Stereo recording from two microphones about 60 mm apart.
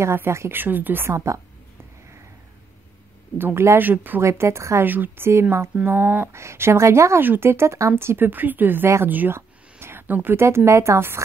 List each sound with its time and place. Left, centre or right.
0.0 s speech: right
0.6 s speech: right
1.0 s a woman's voice: right
3.3 s speech: right
4.2 s speech: right
4.8 s speech: right
5.9 s speech: right
6.3 s speech: right
7.2 s speech: right
9.3 s a sound: right
10.3 s speech: right